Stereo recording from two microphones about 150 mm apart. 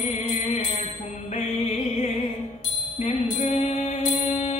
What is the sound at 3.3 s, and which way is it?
Mantra, 45° left (ahead or behind).